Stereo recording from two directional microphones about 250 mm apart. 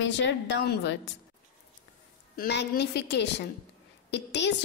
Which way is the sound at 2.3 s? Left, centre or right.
Left.